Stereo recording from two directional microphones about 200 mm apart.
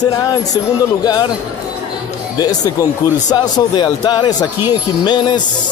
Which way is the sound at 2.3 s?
20° left (ahead or behind).